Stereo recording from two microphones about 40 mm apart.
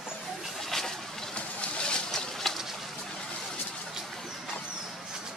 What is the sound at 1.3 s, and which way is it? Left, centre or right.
Vehicle, left.